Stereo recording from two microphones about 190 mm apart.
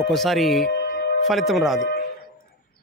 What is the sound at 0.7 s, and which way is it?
Music, 55° left (ahead or behind).